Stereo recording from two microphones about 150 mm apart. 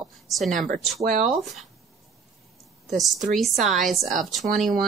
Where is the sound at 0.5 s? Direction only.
60° right (ahead or behind).